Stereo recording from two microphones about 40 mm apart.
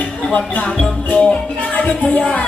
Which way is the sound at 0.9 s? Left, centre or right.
Left.